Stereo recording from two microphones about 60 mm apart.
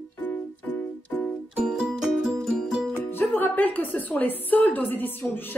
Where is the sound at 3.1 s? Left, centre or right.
Left.